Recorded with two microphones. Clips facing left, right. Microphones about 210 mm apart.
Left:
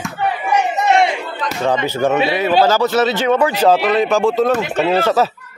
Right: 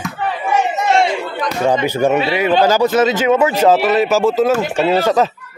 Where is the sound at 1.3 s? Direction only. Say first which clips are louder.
Right 2 dB; 15° right (ahead or behind).